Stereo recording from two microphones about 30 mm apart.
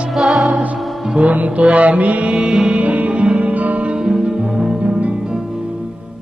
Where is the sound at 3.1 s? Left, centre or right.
Right.